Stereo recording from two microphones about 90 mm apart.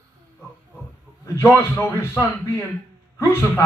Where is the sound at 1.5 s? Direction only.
25° left (ahead or behind).